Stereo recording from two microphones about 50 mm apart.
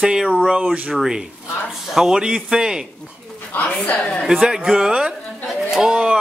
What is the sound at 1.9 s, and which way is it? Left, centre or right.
Speech, centre.